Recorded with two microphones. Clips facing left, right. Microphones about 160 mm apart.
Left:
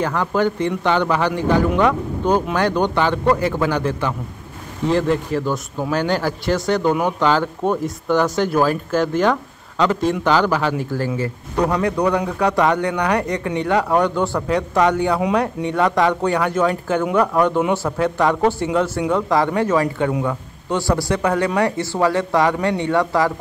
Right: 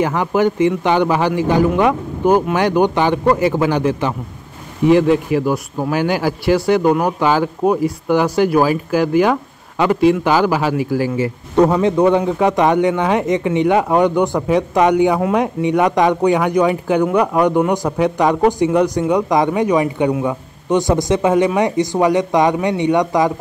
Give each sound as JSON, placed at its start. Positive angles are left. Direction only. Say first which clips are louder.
{"t": 0.0, "sound": "a man's voice", "louder": "right 3 dB", "side_deg": -15}
{"t": 11.8, "sound": "a man's voice", "louder": "right 5 dB", "side_deg": -25}